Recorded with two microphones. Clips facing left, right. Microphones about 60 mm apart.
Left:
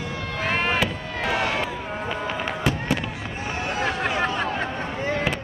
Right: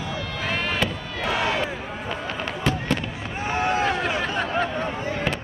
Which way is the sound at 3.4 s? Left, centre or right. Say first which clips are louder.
Right 5 dB; right.